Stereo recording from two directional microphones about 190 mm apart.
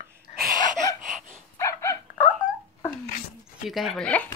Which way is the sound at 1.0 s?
40° right (ahead or behind).